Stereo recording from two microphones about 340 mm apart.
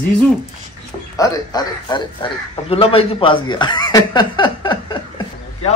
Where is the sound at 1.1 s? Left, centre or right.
Centre.